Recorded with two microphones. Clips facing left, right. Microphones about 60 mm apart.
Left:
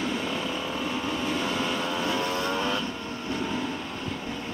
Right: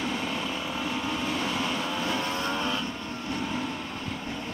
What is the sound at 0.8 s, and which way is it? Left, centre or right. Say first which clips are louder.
Vehicle: even; left.